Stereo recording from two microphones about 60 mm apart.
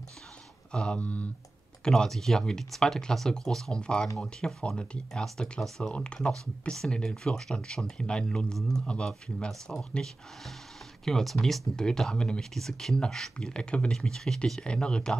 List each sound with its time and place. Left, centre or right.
0.7 s speech: centre
1.9 s speech: centre
9.5 s speech: centre
11.1 s speech: centre